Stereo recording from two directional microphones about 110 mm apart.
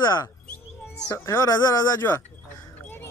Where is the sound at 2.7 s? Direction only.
15° left (ahead or behind).